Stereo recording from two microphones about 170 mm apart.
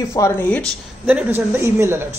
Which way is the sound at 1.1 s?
10° right (ahead or behind).